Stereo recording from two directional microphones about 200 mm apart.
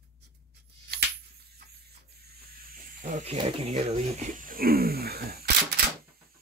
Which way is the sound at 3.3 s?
30° right (ahead or behind).